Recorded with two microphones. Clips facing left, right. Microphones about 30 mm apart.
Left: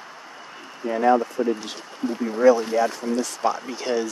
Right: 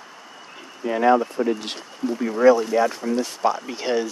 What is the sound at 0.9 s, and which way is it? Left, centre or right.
Speech, right.